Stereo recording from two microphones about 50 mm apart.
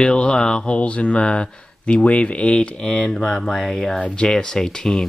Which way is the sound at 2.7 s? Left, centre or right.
Centre.